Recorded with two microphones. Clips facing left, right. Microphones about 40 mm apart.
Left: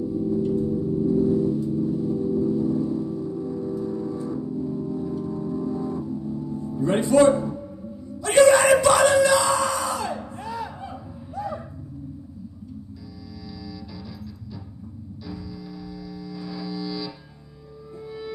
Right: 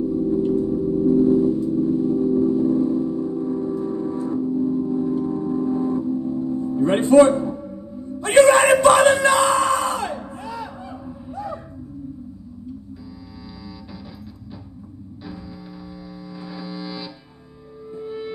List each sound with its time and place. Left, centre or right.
0.3 s gong: right
8.2 s bellow: right
16.5 s music: right